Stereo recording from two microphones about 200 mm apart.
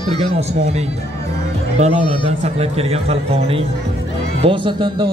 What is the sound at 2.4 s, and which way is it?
Speech, 30° right (ahead or behind).